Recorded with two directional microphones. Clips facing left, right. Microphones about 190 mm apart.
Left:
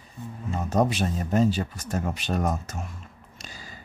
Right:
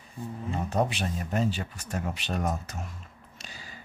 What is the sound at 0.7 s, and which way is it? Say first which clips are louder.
Speech: left 5 dB; 40° left (ahead or behind).